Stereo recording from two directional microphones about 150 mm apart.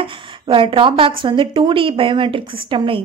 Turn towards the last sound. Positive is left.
turn(degrees=-35)  # may be behind; listen again after turning